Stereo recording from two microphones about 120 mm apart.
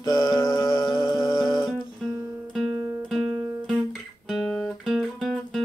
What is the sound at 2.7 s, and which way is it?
Guitar, 25° right (ahead or behind).